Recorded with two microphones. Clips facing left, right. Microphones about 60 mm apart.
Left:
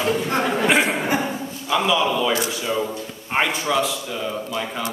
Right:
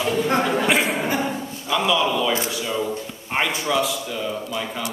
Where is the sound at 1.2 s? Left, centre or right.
Centre.